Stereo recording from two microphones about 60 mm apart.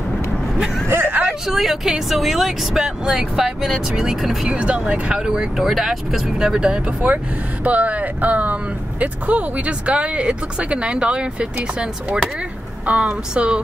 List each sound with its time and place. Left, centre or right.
0.8 s vehicle: right
1.5 s speech: centre
4.6 s speech: centre